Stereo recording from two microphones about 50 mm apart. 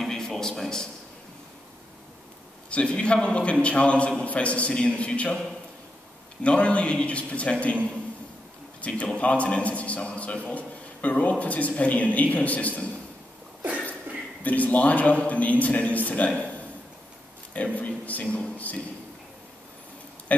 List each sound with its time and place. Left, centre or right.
0.0 s a sound: centre
2.7 s a man's voice: left
6.4 s a man's voice: left
14.4 s a man's voice: left
17.6 s a man's voice: left
20.3 s a sound: left